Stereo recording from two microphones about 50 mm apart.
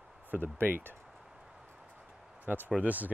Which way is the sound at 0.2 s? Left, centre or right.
Right.